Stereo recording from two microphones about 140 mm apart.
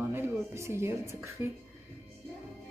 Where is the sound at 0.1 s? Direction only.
20° right (ahead or behind).